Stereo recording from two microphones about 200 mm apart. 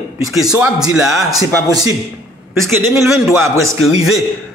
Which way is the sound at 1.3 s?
20° right (ahead or behind).